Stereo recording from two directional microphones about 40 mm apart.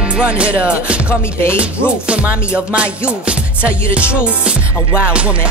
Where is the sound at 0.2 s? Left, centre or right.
Right.